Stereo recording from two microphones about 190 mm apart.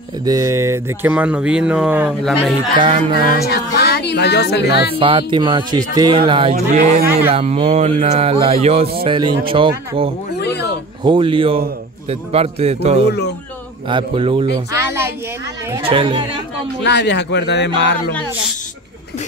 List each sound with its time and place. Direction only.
0.2 s speech: 20° right (ahead or behind); by 2.5 s centre (ahead or behind)
2.7 s speech: 25° right (ahead or behind)
3.4 s speech: 55° left (ahead or behind)
4.9 s speech: 25° right (ahead or behind)
6.5 s speech: 50° right (ahead or behind)
7.1 s speech: 15° right (ahead or behind)
7.3 s speech: 30° right (ahead or behind)
10.3 s a sound: 60° left (ahead or behind)
11.1 s speech: 25° right (ahead or behind)
14.7 s a sound: 15° right (ahead or behind)
15.8 s speech: 30° right (ahead or behind)
16.8 s a man's voice: 65° left (ahead or behind)